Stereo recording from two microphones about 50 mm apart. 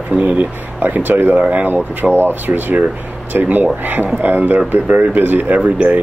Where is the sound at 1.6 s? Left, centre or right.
Right.